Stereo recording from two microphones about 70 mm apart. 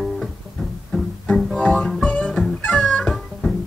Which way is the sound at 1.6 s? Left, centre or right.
Left.